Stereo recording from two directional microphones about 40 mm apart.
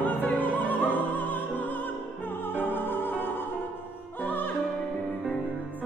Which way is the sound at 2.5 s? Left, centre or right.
Left.